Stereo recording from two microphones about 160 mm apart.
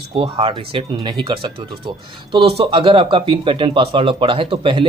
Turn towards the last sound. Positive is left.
turn(degrees=-30)  # may be behind; listen again after turning